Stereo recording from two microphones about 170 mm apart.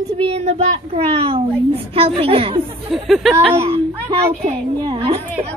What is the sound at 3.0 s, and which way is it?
Speech, centre (ahead or behind).